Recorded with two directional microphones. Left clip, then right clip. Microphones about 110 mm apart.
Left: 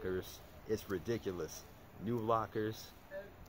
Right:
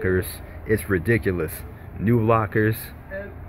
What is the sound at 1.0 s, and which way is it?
Speech, 15° left (ahead or behind).